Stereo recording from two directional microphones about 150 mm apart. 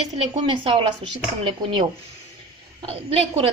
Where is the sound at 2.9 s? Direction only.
40° right (ahead or behind).